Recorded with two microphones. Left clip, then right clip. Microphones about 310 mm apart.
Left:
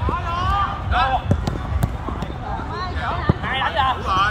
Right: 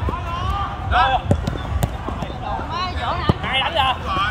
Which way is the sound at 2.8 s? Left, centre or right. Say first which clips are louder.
Right 2 dB; right.